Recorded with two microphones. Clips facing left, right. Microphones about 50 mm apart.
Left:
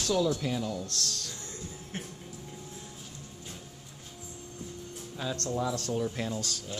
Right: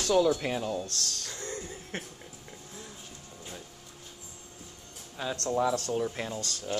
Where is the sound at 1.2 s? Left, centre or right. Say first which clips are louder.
Right 5 dB; right.